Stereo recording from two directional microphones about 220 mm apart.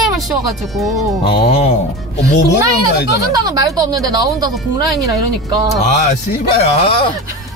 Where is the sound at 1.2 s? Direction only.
25° left (ahead or behind).